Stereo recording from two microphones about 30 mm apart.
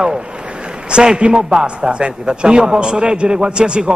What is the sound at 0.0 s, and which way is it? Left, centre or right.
A man's voice, right.